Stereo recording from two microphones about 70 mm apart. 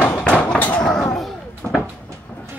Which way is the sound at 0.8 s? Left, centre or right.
Centre.